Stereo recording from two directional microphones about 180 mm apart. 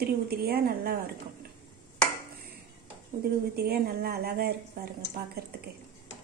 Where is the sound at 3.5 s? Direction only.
60° right (ahead or behind).